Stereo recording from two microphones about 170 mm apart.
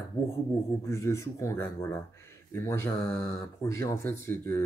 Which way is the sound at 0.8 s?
15° left (ahead or behind).